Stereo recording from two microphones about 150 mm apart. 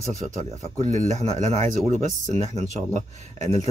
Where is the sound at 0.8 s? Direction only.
50° right (ahead or behind).